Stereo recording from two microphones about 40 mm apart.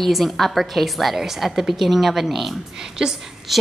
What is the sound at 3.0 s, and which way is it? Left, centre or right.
Speech, right.